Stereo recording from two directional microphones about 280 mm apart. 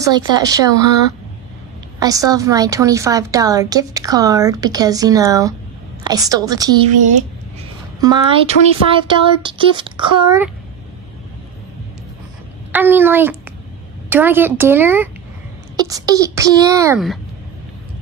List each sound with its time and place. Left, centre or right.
0.0 s a woman's voice: centre
2.0 s a woman's voice: centre
7.0 s a woman's voice: right
12.7 s a woman's voice: centre